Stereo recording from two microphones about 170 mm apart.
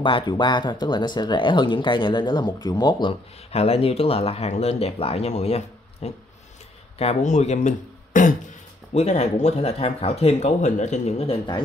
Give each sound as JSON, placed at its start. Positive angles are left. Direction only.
{"t": 0.0, "sound": "speech", "side_deg": 30}